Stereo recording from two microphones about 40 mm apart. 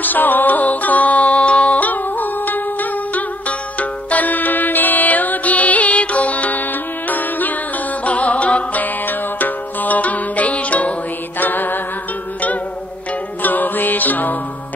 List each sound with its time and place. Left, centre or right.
0.0 s music: left
8.8 s music: left
11.3 s music: left
13.4 s music: left